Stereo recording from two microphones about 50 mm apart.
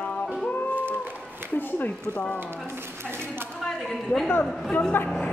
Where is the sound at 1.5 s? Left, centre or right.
Left.